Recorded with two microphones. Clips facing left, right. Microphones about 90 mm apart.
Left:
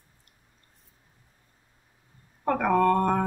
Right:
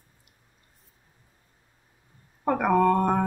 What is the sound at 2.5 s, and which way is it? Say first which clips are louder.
Speech: right 1 dB; 10° right (ahead or behind).